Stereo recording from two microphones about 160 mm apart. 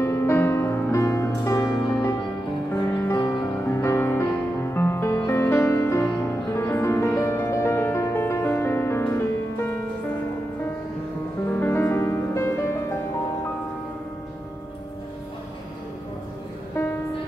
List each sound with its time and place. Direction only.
0.0 s music: 15° left (ahead or behind)
11.5 s music: 15° left (ahead or behind)